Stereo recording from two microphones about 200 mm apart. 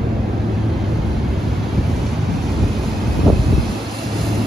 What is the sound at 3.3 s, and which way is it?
Vehicle, centre (ahead or behind).